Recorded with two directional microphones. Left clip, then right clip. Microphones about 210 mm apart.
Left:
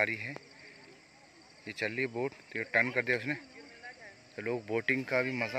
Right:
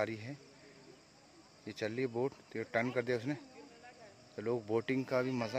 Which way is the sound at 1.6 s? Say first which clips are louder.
Left 4 dB; 5° right (ahead or behind).